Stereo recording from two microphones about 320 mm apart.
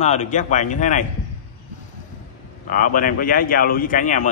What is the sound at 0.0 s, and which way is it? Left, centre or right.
A man's voice, left.